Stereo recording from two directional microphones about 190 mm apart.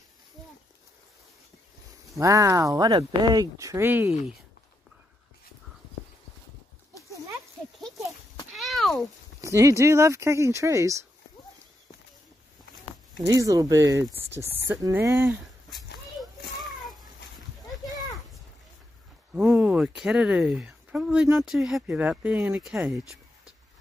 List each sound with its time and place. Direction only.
2.1 s speech: 15° right (ahead or behind)
8.5 s cat: centre (ahead or behind)
9.4 s speech: 15° right (ahead or behind)
13.3 s speech: 15° right (ahead or behind)
19.3 s speech: 5° right (ahead or behind)